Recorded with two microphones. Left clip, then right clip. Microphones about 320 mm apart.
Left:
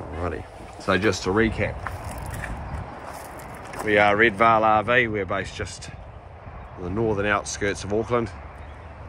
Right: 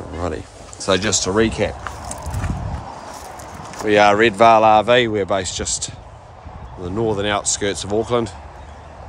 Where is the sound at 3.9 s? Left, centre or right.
Centre.